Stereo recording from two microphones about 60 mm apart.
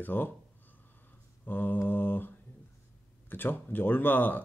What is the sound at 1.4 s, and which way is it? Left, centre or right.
Speech, left.